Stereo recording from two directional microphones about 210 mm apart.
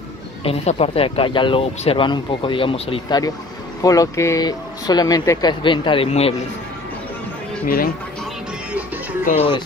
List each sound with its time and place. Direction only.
0.4 s speech: 30° left (ahead or behind)
7.6 s speech: 45° left (ahead or behind)
9.2 s speech: 30° left (ahead or behind)